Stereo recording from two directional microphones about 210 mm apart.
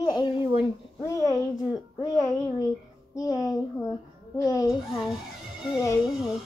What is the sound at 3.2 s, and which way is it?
Speech, 15° left (ahead or behind).